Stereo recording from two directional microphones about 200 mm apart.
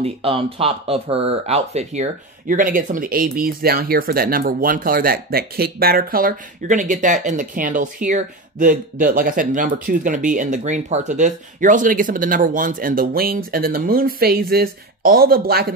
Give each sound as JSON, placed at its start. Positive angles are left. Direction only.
{"t": 0.0, "sound": "speech", "side_deg": -30}